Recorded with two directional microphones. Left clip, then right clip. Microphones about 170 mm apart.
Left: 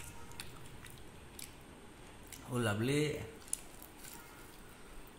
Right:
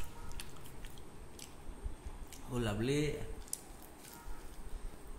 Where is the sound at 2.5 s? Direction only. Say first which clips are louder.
Left 1 dB; 30° left (ahead or behind).